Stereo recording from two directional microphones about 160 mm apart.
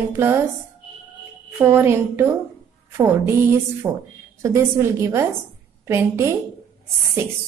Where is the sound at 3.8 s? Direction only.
25° right (ahead or behind).